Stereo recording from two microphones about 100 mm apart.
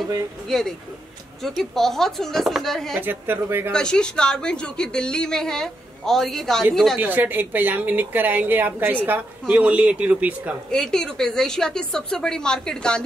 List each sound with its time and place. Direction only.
0.5 s speech: 5° left (ahead or behind)
3.0 s speech: 20° right (ahead or behind)
3.7 s a woman's voice: 10° left (ahead or behind)
7.0 s speech: 20° right (ahead or behind)
10.7 s a woman's voice: 5° left (ahead or behind)